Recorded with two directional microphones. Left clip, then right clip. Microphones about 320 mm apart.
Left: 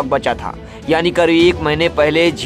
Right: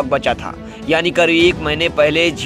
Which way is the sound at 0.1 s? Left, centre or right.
Centre.